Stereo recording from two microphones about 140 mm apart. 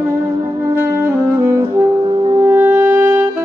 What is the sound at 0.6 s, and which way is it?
Brass instrument, 20° right (ahead or behind).